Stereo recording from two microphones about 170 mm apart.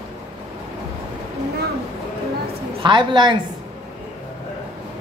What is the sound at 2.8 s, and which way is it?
Speech, 25° right (ahead or behind).